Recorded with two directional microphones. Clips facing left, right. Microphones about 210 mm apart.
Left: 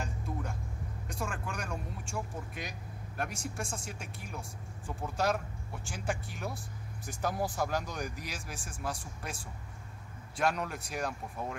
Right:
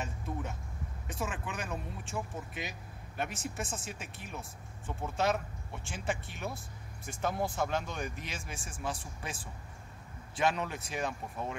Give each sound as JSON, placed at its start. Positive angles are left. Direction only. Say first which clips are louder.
{"t": 0.0, "sound": "vehicle", "louder": "even", "side_deg": -5}
{"t": 1.0, "sound": "speech", "louder": "right 1 dB", "side_deg": -5}
{"t": 10.3, "sound": "speech", "louder": "even", "side_deg": 0}